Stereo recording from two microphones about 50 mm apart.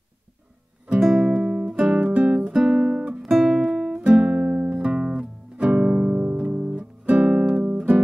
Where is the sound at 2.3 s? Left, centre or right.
Centre.